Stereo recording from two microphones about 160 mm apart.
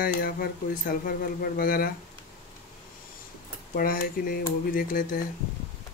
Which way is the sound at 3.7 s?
65° left (ahead or behind).